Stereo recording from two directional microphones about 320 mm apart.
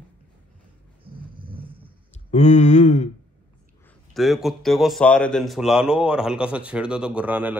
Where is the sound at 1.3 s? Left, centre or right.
Centre.